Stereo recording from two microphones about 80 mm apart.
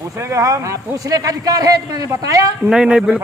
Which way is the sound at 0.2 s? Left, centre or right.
Right.